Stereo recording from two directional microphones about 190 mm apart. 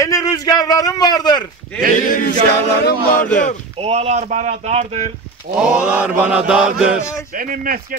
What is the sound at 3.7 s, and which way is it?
Speech, 30° right (ahead or behind).